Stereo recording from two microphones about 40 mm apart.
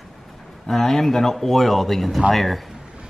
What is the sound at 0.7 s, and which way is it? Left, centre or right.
Speech, centre.